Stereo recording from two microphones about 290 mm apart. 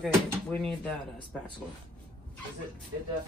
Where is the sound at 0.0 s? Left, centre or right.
Centre.